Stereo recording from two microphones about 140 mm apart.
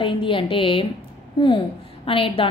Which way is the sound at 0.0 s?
40° left (ahead or behind).